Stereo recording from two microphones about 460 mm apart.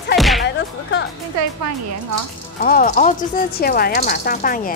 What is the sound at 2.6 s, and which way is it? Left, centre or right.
Speech, centre.